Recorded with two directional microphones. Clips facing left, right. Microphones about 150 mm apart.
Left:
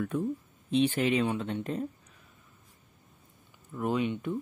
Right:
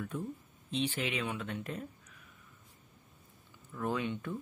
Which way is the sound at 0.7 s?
55° left (ahead or behind).